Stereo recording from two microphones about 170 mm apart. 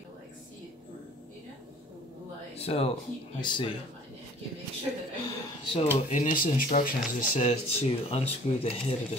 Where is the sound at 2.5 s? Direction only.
35° left (ahead or behind).